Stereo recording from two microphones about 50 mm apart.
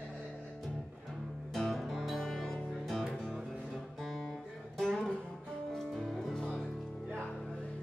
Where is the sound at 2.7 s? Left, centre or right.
Centre.